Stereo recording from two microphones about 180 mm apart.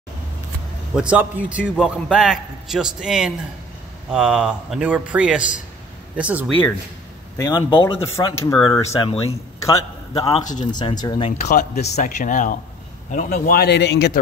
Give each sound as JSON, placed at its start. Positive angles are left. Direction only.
{"t": 0.9, "sound": "a man's voice", "side_deg": -5}
{"t": 7.3, "sound": "speech", "side_deg": 20}
{"t": 8.8, "sound": "speech", "side_deg": 35}
{"t": 9.7, "sound": "a man's voice", "side_deg": 20}
{"t": 11.2, "sound": "speech", "side_deg": 45}